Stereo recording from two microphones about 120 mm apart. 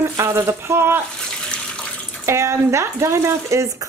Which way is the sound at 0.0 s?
20° right (ahead or behind).